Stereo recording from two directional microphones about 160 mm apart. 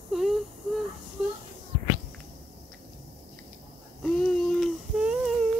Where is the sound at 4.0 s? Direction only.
5° left (ahead or behind).